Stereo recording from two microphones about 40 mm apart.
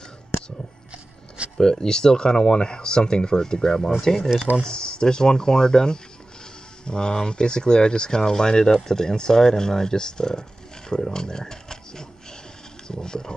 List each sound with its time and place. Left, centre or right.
1.6 s speech: centre
10.9 s a sound: centre
12.8 s speech: centre